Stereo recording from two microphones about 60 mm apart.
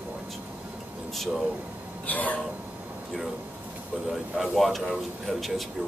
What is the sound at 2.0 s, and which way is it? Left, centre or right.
Speech, left.